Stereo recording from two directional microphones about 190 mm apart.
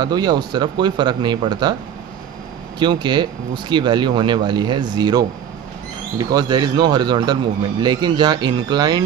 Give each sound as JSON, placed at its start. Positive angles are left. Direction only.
{"t": 0.0, "sound": "speech", "side_deg": -20}
{"t": 2.8, "sound": "speech", "side_deg": -25}
{"t": 6.3, "sound": "speech", "side_deg": -20}